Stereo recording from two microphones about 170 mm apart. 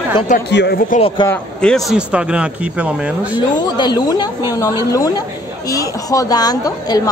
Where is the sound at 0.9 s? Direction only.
50° left (ahead or behind).